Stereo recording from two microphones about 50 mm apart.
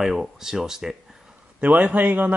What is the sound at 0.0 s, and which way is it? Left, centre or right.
Speech, centre.